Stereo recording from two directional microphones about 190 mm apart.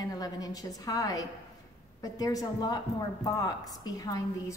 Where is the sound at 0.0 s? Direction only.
20° left (ahead or behind).